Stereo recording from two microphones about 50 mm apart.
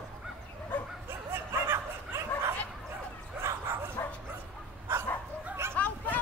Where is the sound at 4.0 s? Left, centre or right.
Left.